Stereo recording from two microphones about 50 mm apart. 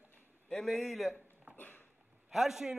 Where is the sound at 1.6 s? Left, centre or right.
Left.